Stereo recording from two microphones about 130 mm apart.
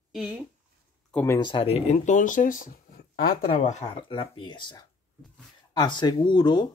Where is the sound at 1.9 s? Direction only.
70° left (ahead or behind); by 2.8 s 90° left.